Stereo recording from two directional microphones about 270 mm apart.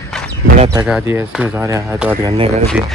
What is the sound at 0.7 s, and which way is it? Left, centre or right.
A man's voice, centre.